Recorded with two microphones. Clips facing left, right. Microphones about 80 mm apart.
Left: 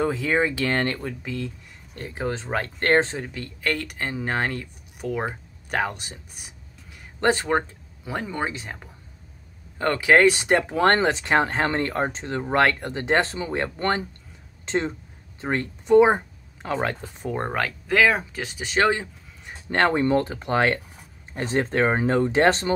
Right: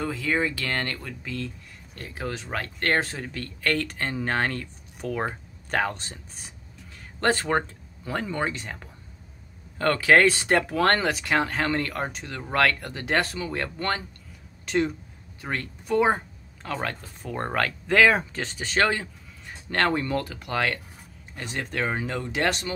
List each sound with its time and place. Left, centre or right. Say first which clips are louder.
0.0 s speech: left 4 dB; left
17.5 s speech: right 3 dB; centre; by 22.7 s left